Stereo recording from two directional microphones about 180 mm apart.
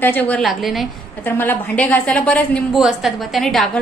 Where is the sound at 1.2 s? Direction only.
10° left (ahead or behind).